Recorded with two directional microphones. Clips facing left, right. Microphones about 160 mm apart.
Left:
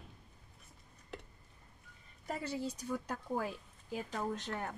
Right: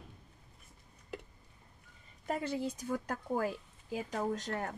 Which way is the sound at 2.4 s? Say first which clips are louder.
Right 3 dB; 55° right (ahead or behind).